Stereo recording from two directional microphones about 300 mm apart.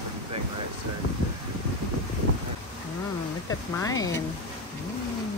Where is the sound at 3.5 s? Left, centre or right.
Centre.